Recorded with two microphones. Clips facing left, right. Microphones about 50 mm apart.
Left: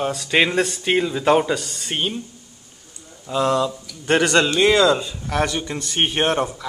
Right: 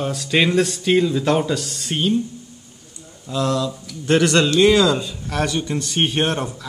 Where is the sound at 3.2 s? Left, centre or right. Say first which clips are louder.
Left 2 dB; centre.